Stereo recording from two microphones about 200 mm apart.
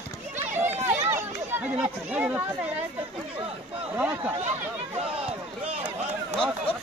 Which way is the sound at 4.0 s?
10° right (ahead or behind).